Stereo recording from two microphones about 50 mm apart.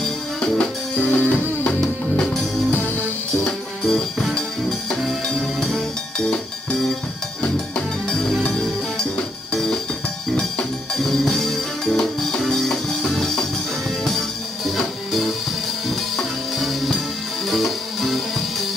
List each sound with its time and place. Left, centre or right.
0.0 s music: centre
1.8 s music: centre
3.8 s music: centre
5.6 s music: centre
6.1 s music: centre
8.1 s music: centre